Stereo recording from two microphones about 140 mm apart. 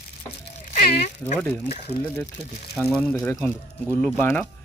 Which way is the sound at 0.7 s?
55° left (ahead or behind).